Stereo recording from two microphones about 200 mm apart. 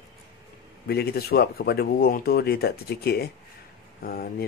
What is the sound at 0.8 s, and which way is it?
Speech, 50° left (ahead or behind).